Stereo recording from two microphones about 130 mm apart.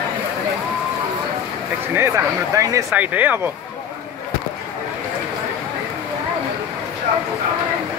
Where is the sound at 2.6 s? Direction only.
25° right (ahead or behind).